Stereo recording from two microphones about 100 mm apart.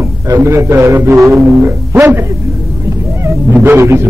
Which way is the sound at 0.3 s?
30° right (ahead or behind).